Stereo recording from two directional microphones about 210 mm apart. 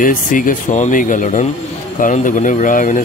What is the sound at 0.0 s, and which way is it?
Speech, 40° left (ahead or behind).